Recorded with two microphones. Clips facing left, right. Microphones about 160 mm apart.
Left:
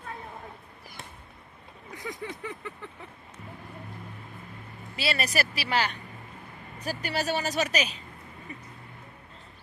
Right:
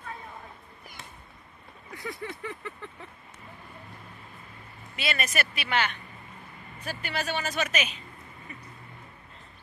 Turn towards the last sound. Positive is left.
turn(degrees=35)  # may be behind; listen again after turning